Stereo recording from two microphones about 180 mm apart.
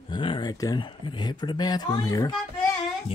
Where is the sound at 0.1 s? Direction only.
25° left (ahead or behind).